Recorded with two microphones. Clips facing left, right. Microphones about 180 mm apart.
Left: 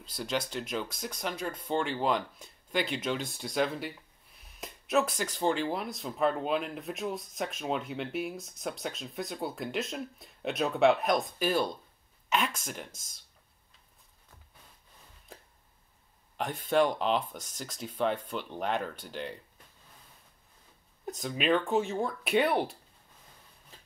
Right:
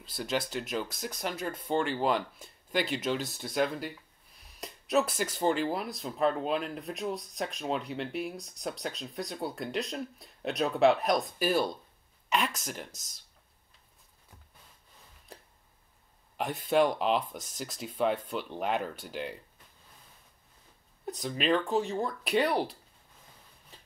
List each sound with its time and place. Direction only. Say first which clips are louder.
0.1 s speech: right 1 dB; 5° right (ahead or behind)
2.3 s speech: right 1 dB; 45° right (ahead or behind)
2.9 s speech: right 1 dB; centre (ahead or behind)
16.6 s speech: right 1 dB; 5° right (ahead or behind)
21.2 s speech: even; centre (ahead or behind)